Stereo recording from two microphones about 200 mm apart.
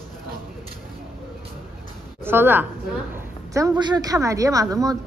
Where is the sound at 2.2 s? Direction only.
10° right (ahead or behind).